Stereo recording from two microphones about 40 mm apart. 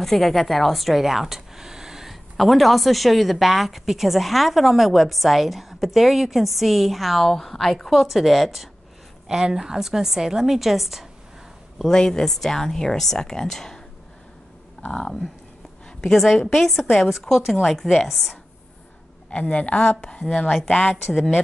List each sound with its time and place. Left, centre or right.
0.0 s a woman's voice: centre
2.3 s a woman's voice: centre
7.9 s a woman's voice: centre
9.3 s a woman's voice: centre
11.9 s speech: centre
14.9 s speech: centre
16.1 s a woman's voice: centre
19.3 s a woman's voice: left